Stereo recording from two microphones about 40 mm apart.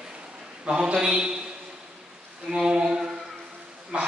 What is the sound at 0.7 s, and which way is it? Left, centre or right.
Speech, right.